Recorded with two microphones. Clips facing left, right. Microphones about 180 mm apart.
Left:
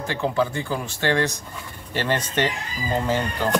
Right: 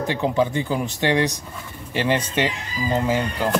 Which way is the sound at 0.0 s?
20° right (ahead or behind).